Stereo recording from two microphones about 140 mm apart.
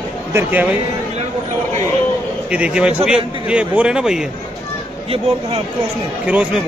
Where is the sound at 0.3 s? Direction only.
15° right (ahead or behind).